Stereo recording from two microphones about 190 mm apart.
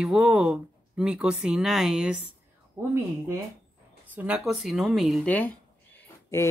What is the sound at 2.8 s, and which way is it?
Speech, 15° right (ahead or behind).